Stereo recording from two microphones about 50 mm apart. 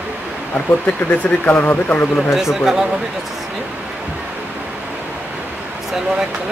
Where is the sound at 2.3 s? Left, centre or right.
Centre.